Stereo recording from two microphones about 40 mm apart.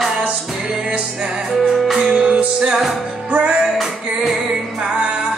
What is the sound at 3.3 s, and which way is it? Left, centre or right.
Music, right.